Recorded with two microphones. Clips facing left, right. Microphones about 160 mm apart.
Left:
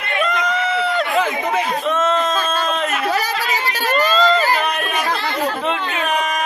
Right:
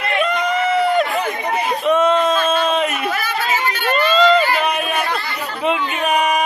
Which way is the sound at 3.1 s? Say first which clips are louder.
Left 1 dB; 40° left (ahead or behind).